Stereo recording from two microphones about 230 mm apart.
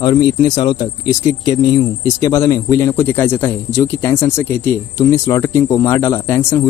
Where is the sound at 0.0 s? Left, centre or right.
Centre.